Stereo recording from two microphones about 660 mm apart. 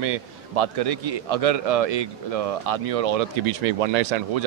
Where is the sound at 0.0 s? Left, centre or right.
Right.